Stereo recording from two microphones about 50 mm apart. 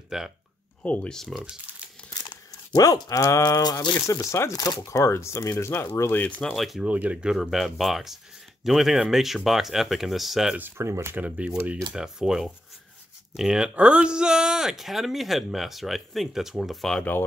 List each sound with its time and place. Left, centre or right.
0.1 s speech: centre
0.8 s speech: left
3.1 s speech: left
6.4 s speech: centre
6.8 s speech: right
7.2 s speech: centre
7.5 s speech: centre
10.8 s speech: right
11.1 s speech: right
12.0 s speech: centre
13.7 s speech: right; by 16.7 s centre